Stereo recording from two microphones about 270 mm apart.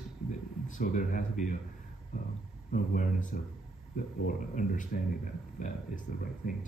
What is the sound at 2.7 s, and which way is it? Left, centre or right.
Speech, left.